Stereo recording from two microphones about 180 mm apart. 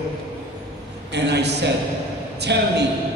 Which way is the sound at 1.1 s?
70° right (ahead or behind).